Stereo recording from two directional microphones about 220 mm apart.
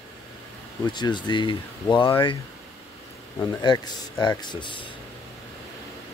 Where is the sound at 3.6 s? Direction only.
20° left (ahead or behind).